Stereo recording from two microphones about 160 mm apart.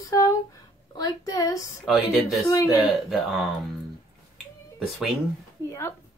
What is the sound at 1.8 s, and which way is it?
Speech, centre (ahead or behind).